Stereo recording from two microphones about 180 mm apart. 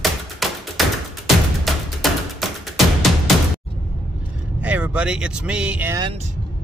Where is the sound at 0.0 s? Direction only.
Centre (ahead or behind).